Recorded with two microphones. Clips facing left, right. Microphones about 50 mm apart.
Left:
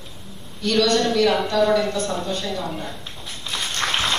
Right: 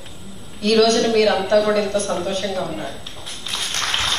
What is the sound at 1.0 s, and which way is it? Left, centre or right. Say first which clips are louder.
A woman's voice: right 2 dB; right.